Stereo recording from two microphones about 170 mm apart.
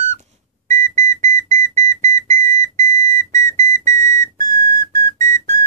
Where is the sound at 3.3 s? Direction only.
50° right (ahead or behind).